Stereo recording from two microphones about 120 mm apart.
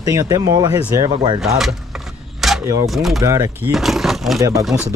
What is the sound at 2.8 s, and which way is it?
Speech, centre (ahead or behind).